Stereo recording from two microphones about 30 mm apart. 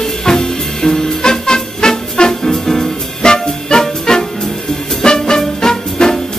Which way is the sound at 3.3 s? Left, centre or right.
Left.